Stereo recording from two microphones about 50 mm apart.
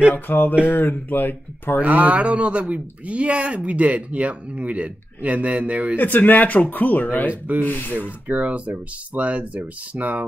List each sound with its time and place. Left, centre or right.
0.1 s speech: left
1.8 s a man's voice: right
5.9 s speech: left
7.2 s speech: right
7.6 s speech: left
8.3 s a man's voice: right